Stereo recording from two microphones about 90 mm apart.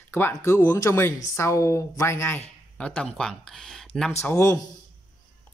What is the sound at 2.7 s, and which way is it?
Speech, 10° left (ahead or behind).